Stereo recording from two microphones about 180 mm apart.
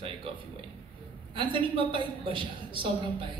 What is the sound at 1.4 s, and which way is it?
A man's voice, 30° right (ahead or behind).